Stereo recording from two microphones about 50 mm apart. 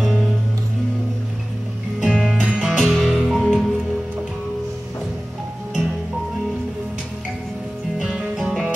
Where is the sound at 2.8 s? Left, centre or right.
Centre.